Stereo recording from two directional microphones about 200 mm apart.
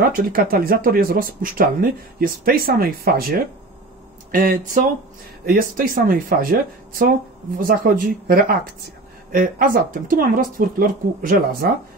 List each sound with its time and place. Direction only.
0.1 s speech: 45° right (ahead or behind)